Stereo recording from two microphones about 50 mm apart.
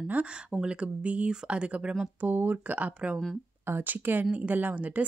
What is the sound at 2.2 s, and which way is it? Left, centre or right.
Speech, right.